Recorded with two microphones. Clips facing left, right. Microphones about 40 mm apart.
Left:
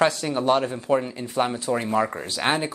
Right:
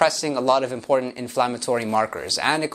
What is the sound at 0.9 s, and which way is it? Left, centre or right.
Speech, centre.